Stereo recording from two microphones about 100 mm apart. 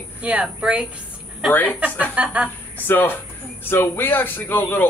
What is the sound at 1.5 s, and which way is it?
Speech, 15° left (ahead or behind).